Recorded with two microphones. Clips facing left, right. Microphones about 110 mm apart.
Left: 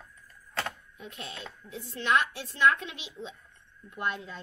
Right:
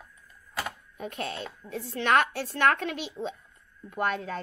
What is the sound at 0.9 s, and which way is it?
Speech, 55° right (ahead or behind).